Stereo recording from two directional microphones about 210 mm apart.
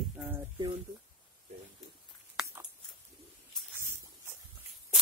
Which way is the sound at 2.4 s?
Centre (ahead or behind).